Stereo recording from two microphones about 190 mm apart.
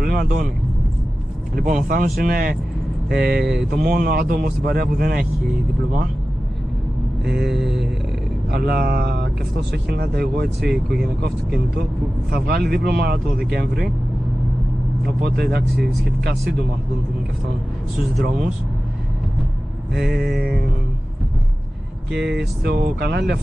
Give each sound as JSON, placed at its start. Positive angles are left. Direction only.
{"t": 0.0, "sound": "vehicle", "side_deg": -50}
{"t": 1.5, "sound": "speech", "side_deg": -50}
{"t": 7.4, "sound": "mantra", "side_deg": 0}
{"t": 8.5, "sound": "speech", "side_deg": -55}
{"t": 10.6, "sound": "mantra", "side_deg": 0}
{"t": 12.4, "sound": "speech", "side_deg": -55}
{"t": 15.2, "sound": "speech", "side_deg": -60}
{"t": 19.9, "sound": "mantra", "side_deg": 0}
{"t": 22.1, "sound": "speech", "side_deg": -65}